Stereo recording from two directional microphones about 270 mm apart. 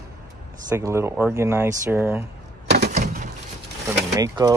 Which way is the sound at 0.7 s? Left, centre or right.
Centre.